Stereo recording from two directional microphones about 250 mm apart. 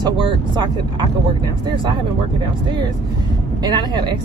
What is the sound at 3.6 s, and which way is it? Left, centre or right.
Speech, centre.